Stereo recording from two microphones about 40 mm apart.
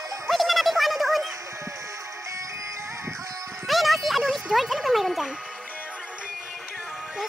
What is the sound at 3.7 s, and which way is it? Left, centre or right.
Music, centre.